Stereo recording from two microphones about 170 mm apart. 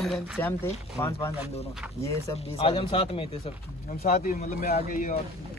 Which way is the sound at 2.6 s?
30° left (ahead or behind).